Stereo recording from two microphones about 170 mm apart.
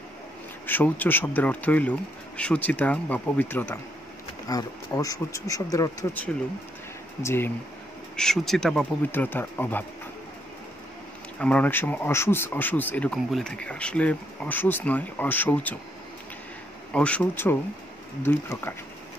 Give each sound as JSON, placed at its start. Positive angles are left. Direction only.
{"t": 0.7, "sound": "speech", "side_deg": 10}
{"t": 7.2, "sound": "speech", "side_deg": 15}
{"t": 8.2, "sound": "speech", "side_deg": 5}
{"t": 11.3, "sound": "speech", "side_deg": 5}
{"t": 16.9, "sound": "speech", "side_deg": 5}